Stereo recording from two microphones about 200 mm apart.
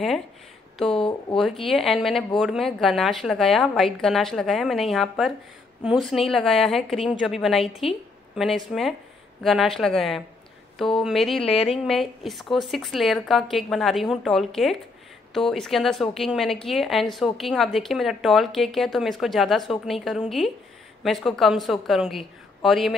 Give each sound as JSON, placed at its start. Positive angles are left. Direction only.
{"t": 0.8, "sound": "speech", "side_deg": 25}
{"t": 1.4, "sound": "a woman's voice", "side_deg": 0}